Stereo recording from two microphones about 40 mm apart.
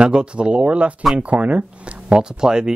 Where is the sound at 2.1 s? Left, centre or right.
Centre.